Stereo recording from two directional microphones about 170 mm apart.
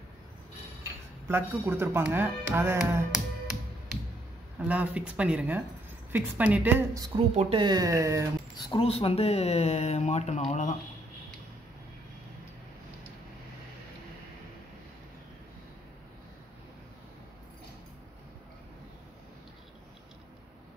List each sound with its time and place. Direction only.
1.2 s speech: 15° right (ahead or behind)
4.6 s speech: 10° right (ahead or behind)
7.3 s speech: 30° right (ahead or behind); by 8.3 s 15° right (ahead or behind)
8.6 s speech: 30° left (ahead or behind)